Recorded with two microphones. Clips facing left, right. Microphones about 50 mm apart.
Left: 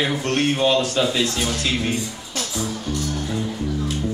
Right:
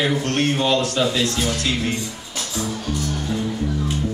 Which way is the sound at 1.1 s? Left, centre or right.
Centre.